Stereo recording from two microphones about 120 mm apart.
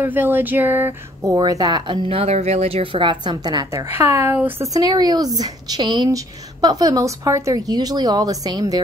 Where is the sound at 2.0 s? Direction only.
55° right (ahead or behind); by 3.8 s 35° right (ahead or behind).